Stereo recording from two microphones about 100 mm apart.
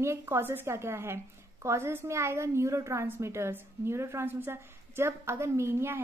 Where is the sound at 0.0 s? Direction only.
25° right (ahead or behind).